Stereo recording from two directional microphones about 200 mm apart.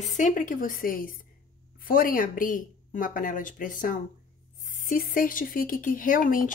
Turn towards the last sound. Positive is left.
turn(degrees=45)  # may be behind; listen again after turning